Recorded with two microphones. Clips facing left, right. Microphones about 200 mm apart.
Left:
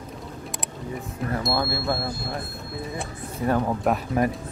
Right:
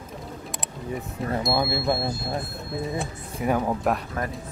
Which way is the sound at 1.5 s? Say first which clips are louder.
Right 3 dB; 20° right (ahead or behind).